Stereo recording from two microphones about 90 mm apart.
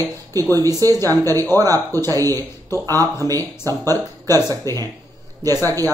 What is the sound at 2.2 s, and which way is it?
Speech, 25° left (ahead or behind).